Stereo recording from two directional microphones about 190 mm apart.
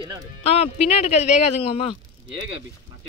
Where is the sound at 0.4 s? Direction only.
35° left (ahead or behind).